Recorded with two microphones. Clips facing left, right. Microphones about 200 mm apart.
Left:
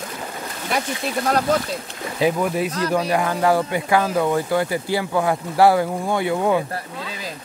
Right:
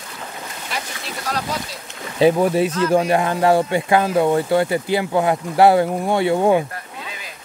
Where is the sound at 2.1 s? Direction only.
30° right (ahead or behind).